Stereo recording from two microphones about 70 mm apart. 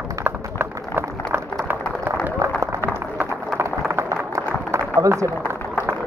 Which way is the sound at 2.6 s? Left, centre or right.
Right.